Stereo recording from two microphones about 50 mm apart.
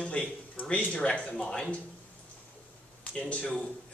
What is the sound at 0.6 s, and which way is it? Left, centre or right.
A man's voice, left.